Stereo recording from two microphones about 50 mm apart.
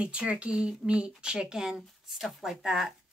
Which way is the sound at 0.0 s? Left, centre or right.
Right.